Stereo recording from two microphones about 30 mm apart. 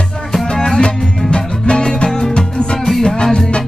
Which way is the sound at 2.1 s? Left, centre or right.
Centre.